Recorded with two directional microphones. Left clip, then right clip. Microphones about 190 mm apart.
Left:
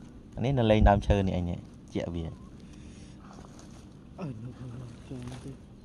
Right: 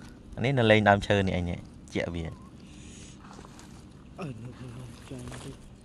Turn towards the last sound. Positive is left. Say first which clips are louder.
# right 1 dB
turn(degrees=55)  # may be behind; listen again after turning